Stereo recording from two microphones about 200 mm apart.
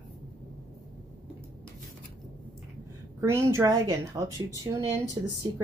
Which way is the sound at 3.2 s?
15° right (ahead or behind).